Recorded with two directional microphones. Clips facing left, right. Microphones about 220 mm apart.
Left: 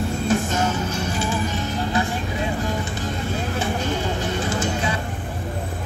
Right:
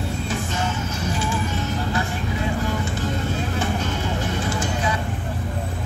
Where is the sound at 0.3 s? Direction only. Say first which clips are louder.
Left 8 dB; 45° left (ahead or behind).